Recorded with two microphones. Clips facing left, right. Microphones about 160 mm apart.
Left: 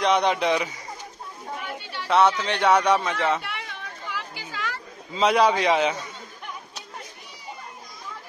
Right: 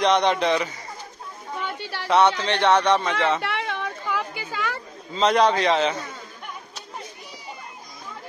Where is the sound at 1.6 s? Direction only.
80° right.